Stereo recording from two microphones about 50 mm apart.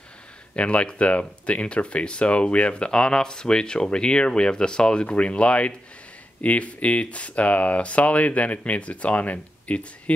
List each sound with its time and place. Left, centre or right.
0.6 s speech: left